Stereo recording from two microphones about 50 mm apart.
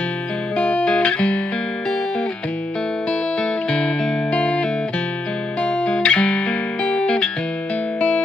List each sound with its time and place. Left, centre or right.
0.6 s music: left
3.7 s music: centre